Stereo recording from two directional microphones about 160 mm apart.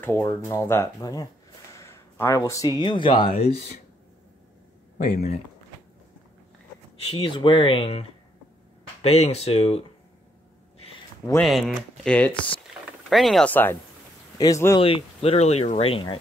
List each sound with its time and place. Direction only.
0.0 s speech: 15° left (ahead or behind); by 3.5 s 35° left (ahead or behind)
4.9 s speech: 45° left (ahead or behind)
7.0 s speech: 35° left (ahead or behind)
9.0 s speech: 40° left (ahead or behind)
11.4 s speech: centre (ahead or behind); by 14.8 s 20° left (ahead or behind)
14.8 s speech: 35° left (ahead or behind)